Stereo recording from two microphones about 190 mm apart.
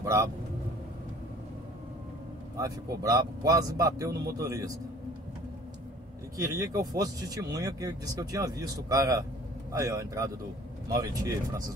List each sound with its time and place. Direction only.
0.0 s speech: 15° right (ahead or behind)
2.5 s speech: 20° right (ahead or behind)
6.3 s speech: 15° right (ahead or behind)